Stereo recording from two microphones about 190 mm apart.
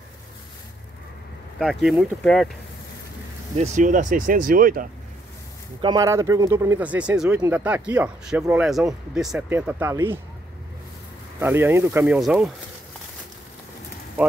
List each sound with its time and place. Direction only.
1.6 s speech: centre (ahead or behind)
3.5 s speech: 35° right (ahead or behind)
5.8 s speech: 20° right (ahead or behind)
11.3 s speech: 10° right (ahead or behind)